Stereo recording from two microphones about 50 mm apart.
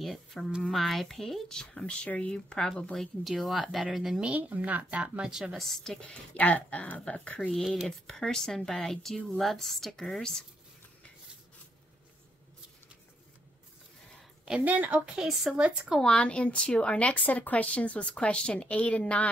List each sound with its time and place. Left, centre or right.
0.0 s a woman's voice: centre
4.4 s speech: right; by 5.6 s centre
5.6 s speech: centre
5.9 s speech: left
8.1 s speech: centre
14.6 s speech: right
15.1 s a woman's voice: centre
16.0 s speech: centre
17.2 s speech: left